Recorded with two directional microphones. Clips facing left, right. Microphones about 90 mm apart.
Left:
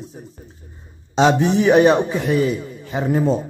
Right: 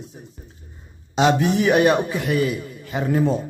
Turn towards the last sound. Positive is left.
turn(degrees=25)  # may be behind; listen again after turning